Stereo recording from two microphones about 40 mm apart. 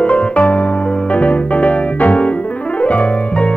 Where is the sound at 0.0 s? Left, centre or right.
Left.